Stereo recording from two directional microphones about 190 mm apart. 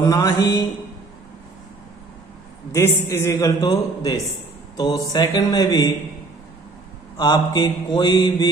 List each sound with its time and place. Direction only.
0.0 s a man's voice: 20° left (ahead or behind)
2.7 s a man's voice: 15° left (ahead or behind)
4.7 s mantra: 20° left (ahead or behind)
7.2 s mantra: 20° left (ahead or behind)